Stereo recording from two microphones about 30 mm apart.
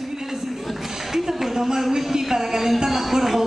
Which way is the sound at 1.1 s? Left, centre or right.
Centre.